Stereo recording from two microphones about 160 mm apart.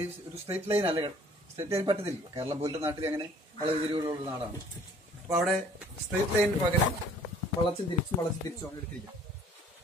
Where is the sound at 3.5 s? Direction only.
35° right (ahead or behind).